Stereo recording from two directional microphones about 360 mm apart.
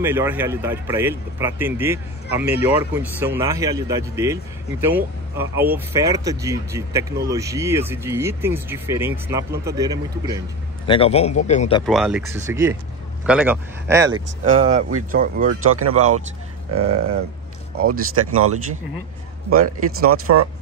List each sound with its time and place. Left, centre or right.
0.0 s speech: centre
10.9 s a man's voice: centre
11.8 s speech: centre
14.5 s speech: centre
15.7 s speech: right
19.5 s speech: right